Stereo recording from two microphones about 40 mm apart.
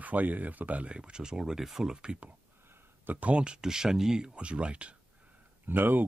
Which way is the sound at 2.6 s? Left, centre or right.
Right.